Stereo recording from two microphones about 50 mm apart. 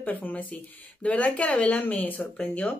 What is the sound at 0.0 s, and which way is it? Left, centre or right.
Speech, left.